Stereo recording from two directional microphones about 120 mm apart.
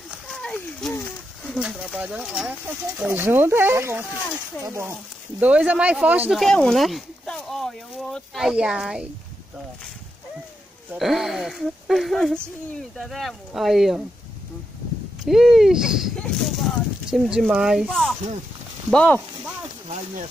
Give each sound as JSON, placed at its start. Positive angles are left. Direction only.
{"t": 0.3, "sound": "a sound", "side_deg": 5}
{"t": 1.4, "sound": "speech", "side_deg": -5}
{"t": 5.4, "sound": "speech", "side_deg": -10}
{"t": 6.3, "sound": "speech", "side_deg": 5}
{"t": 11.0, "sound": "speech", "side_deg": 0}
{"t": 15.2, "sound": "speech", "side_deg": -5}